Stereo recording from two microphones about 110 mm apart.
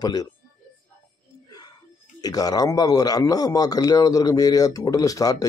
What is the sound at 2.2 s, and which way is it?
Speech, 35° left (ahead or behind).